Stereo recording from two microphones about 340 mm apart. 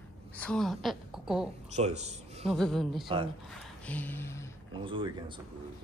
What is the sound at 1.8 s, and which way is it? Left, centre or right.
Speech, centre.